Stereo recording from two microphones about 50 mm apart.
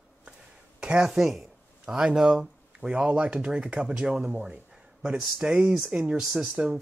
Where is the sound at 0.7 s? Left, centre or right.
Centre.